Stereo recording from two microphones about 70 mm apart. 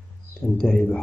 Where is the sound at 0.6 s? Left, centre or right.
Centre.